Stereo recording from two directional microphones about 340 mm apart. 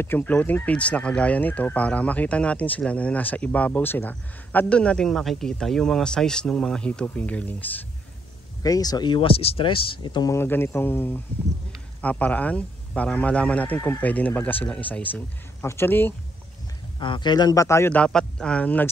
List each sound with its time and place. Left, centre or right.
0.0 s speech: centre
8.6 s speech: centre